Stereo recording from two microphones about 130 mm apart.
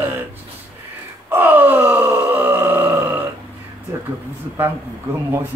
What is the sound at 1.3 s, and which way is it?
Groan, 15° right (ahead or behind).